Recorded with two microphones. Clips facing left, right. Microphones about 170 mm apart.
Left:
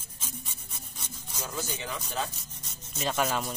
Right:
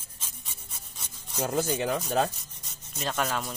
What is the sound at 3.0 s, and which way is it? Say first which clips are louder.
Speech: left 1 dB; 5° left (ahead or behind).